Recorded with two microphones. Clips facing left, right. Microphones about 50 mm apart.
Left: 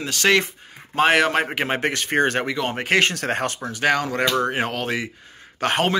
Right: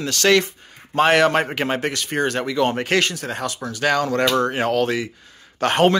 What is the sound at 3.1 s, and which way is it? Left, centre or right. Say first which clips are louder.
Speech: left 3 dB; left.